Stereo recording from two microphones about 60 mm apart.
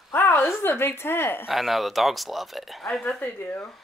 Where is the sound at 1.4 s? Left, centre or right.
Centre.